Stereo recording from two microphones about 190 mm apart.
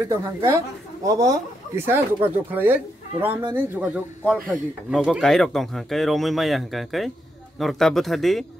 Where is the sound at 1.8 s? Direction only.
10° right (ahead or behind).